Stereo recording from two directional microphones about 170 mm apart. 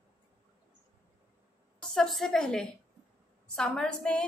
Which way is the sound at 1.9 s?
Centre (ahead or behind).